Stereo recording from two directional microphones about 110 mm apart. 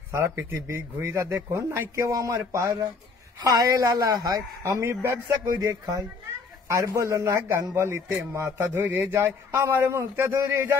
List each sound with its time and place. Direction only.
0.1 s a man's voice: 25° right (ahead or behind)